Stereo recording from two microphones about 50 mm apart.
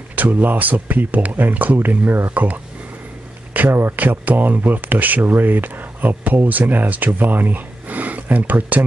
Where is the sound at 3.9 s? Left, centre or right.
Right.